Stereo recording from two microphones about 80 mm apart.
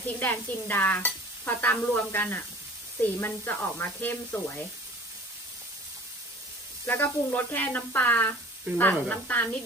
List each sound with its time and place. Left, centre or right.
0.0 s stir: left
6.9 s stir: left